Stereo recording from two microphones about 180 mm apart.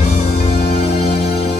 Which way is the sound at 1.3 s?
35° left (ahead or behind).